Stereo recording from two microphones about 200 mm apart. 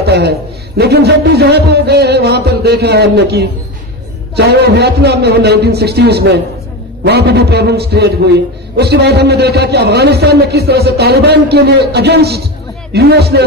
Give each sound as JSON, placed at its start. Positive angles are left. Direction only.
{"t": 0.0, "sound": "a man's voice", "side_deg": -55}